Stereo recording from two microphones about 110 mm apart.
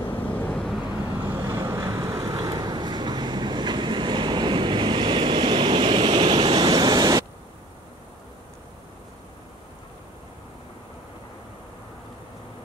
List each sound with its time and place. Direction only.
0.1 s vehicle: 15° left (ahead or behind)
1.3 s vehicle: 25° right (ahead or behind)